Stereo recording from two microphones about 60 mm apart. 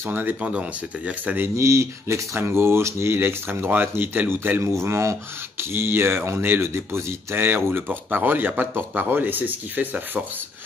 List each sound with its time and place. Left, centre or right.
0.0 s speech: right
0.4 s speech: right
1.6 s speech: right
7.3 s speech: right